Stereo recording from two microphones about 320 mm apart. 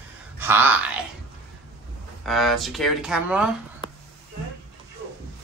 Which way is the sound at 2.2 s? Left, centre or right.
Centre.